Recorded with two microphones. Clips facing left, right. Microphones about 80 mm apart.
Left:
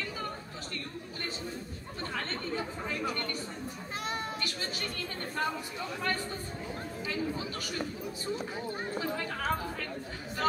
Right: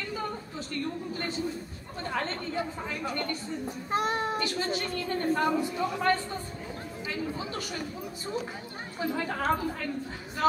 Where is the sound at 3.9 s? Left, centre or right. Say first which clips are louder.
Right 9 dB; right.